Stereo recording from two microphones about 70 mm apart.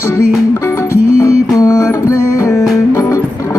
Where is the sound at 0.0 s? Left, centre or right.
Left.